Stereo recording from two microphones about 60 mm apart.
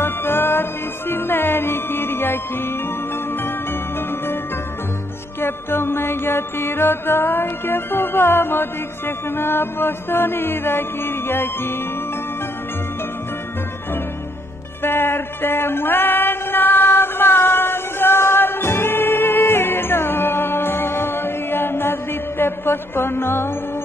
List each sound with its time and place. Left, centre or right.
0.0 s music: left
5.4 s music: left
14.8 s music: left